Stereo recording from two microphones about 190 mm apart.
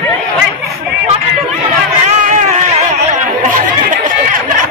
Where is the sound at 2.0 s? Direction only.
40° right (ahead or behind).